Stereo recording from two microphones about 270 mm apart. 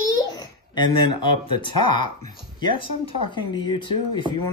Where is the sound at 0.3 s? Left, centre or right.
Centre.